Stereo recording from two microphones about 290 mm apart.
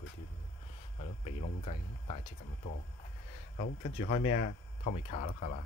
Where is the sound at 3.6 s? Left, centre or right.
Left.